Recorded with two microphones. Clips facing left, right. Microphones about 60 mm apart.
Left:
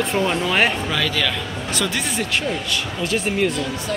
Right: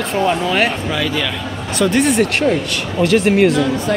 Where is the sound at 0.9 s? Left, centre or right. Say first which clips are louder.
Right 3 dB; centre.